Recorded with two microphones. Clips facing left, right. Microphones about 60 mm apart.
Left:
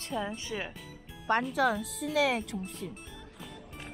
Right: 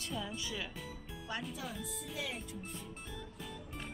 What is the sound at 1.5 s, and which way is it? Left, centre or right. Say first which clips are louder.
Speech: left 15 dB; left.